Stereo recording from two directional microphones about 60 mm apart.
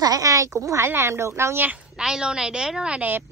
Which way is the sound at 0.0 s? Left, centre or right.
Right.